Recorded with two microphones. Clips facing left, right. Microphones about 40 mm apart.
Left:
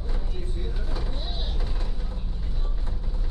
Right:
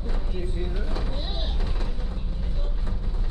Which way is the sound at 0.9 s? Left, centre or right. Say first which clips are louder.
Right 2 dB; centre.